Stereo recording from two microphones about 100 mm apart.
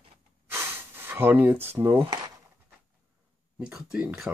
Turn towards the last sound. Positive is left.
turn(degrees=-10)  # may be behind; listen again after turning